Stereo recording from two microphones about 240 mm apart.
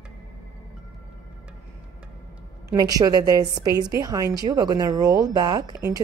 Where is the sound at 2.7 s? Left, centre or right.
Centre.